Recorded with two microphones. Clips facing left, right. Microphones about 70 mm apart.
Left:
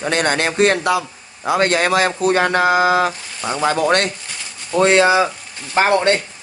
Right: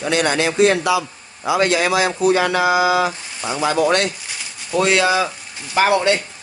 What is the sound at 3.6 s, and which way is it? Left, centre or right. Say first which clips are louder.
Speech: even; left.